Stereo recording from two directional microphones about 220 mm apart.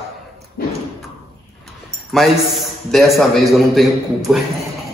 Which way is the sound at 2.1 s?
Centre (ahead or behind).